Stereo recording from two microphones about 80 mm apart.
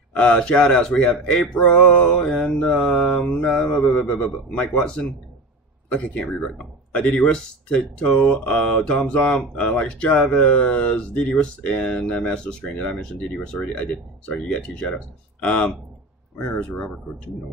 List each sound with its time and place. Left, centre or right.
0.1 s speech: centre
3.4 s mantra: centre
3.9 s speech: centre